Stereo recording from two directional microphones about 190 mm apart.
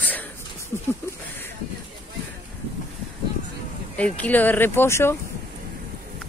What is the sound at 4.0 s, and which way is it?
Speech, 5° left (ahead or behind).